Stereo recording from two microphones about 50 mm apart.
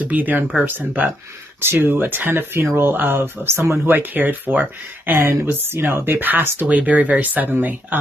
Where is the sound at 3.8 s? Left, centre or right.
Right.